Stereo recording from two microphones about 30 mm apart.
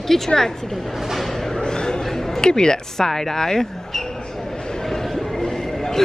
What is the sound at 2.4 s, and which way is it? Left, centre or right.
Speech, left.